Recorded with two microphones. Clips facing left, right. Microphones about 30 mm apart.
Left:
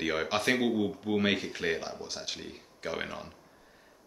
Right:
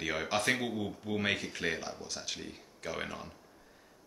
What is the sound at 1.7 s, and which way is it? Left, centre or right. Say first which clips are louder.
Speech: left 3 dB; centre.